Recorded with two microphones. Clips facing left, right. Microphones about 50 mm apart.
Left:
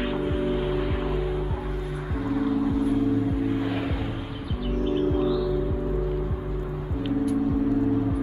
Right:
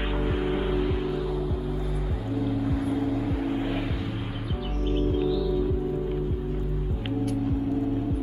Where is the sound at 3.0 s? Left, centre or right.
Right.